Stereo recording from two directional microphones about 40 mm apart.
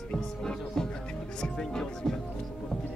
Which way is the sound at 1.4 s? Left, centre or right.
Centre.